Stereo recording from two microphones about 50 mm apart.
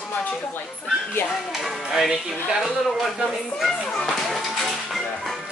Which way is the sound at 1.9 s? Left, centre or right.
Centre.